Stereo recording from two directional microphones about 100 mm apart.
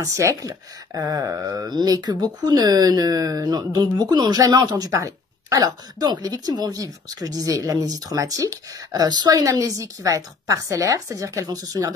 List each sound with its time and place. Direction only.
0.0 s speech: 30° right (ahead or behind)